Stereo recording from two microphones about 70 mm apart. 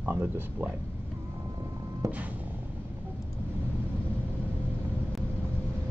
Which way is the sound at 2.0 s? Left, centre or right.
Right.